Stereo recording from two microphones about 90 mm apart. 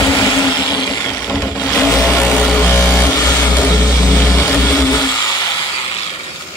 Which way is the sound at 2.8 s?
20° left (ahead or behind).